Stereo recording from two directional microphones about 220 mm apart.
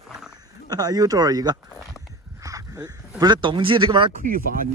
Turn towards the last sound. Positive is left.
turn(degrees=-40)  # may be behind; listen again after turning